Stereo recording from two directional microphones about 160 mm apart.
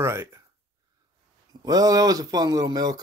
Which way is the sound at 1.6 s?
25° right (ahead or behind).